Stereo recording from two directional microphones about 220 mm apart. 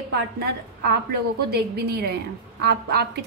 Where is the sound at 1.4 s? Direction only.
45° right (ahead or behind).